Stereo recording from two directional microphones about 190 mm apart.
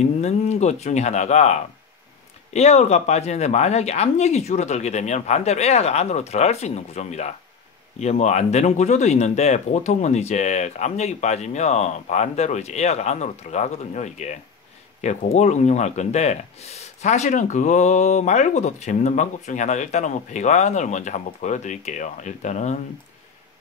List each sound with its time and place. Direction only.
0.2 s speech: 35° left (ahead or behind)